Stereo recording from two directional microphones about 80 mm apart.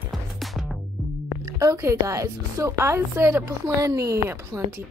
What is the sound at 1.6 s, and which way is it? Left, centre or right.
A woman's voice, right.